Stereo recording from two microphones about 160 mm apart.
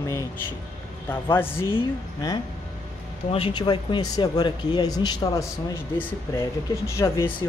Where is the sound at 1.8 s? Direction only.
25° left (ahead or behind).